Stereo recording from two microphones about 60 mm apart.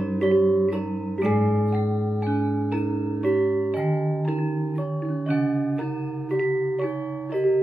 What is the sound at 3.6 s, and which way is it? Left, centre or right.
Music, centre.